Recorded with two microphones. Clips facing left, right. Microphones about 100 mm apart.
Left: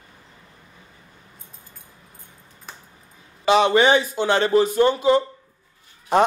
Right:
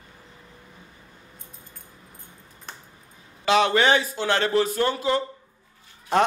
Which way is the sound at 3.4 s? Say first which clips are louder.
Left 3 dB; 5° left (ahead or behind).